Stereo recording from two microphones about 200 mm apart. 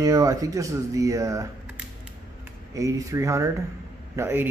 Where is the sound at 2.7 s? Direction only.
15° right (ahead or behind).